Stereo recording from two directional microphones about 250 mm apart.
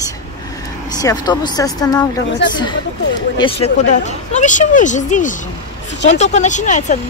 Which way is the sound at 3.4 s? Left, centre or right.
Left.